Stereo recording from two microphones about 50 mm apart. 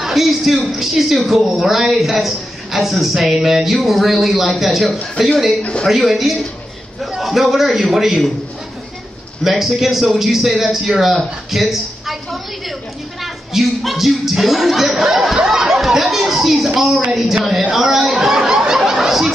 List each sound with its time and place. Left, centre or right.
0.0 s a man's voice: centre
5.6 s speech: centre
5.9 s a man's voice: centre
9.4 s a man's voice: centre
11.5 s a sound: centre
13.2 s a man's voice: centre
17.4 s snicker: centre